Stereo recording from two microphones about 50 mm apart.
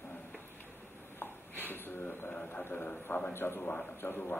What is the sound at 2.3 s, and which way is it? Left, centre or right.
Speech, left.